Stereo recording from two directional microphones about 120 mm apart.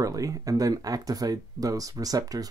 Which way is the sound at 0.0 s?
30° right (ahead or behind).